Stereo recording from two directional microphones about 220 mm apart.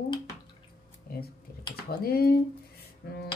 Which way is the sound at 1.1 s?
40° left (ahead or behind).